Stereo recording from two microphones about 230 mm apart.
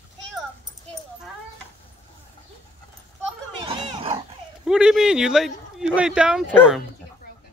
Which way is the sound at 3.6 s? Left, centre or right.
Right.